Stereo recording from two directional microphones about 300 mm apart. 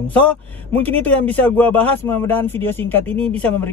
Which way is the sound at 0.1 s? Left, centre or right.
Centre.